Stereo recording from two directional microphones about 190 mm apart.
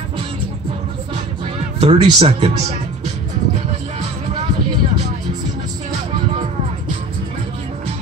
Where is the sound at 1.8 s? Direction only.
30° right (ahead or behind).